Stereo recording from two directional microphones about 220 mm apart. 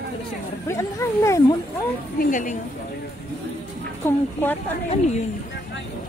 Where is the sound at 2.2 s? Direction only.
35° left (ahead or behind).